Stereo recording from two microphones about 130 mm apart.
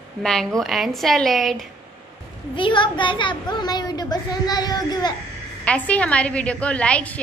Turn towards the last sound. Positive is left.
turn(degrees=10)  # may be behind; listen again after turning